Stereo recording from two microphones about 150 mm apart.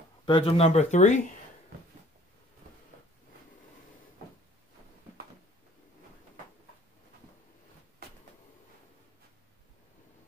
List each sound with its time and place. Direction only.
0.2 s speech: 35° left (ahead or behind); by 1.2 s 50° left (ahead or behind)